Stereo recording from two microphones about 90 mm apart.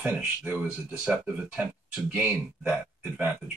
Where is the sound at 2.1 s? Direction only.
15° right (ahead or behind).